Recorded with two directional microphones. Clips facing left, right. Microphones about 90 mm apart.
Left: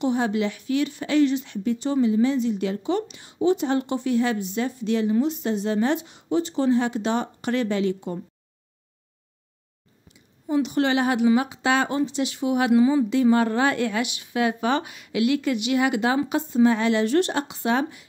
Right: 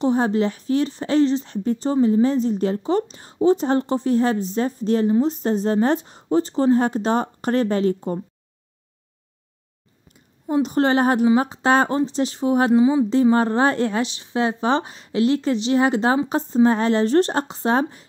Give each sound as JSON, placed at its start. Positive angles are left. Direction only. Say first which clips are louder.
{"t": 0.0, "sound": "speech", "louder": "right 4 dB", "side_deg": -35}
{"t": 10.1, "sound": "a woman's voice", "louder": "right 2 dB", "side_deg": -40}